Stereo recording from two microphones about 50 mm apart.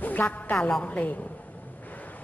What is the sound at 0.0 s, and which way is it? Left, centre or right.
Speech, left.